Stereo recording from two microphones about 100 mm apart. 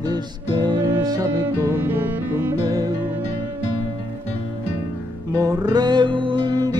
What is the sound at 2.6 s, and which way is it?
Music, 40° right (ahead or behind).